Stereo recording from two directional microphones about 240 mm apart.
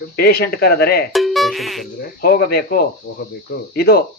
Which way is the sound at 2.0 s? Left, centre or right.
Left.